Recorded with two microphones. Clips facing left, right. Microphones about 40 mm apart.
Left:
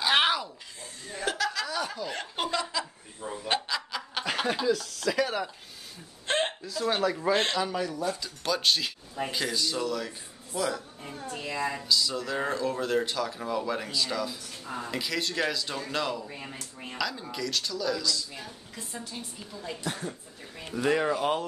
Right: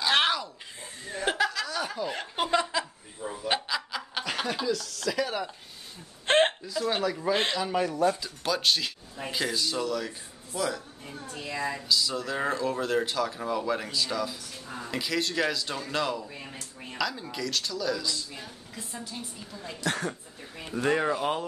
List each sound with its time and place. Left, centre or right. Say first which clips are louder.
0.0 s a sound: even; centre
1.2 s chuckle: right 3 dB; right
1.5 s snicker: even; centre
2.0 s speech: right 2 dB; centre
2.5 s chuckle: right 6 dB; right
3.2 s chuckle: right 1 dB; centre
4.6 s speech: left 2 dB; centre
6.2 s hiccup: right 6 dB; right
6.9 s speech: left 2 dB; centre
7.8 s speech: right 5 dB; right
8.2 s speech: even; centre
11.9 s speech: right 1 dB; centre
19.8 s speech: right 7 dB; right
20.5 s speech: even; centre